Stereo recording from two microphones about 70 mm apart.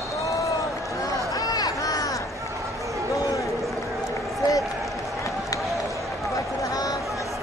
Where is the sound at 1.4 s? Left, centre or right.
Left.